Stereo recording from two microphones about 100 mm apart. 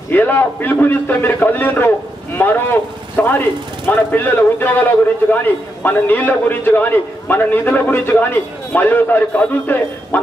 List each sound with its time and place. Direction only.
0.1 s a man's voice: 20° left (ahead or behind)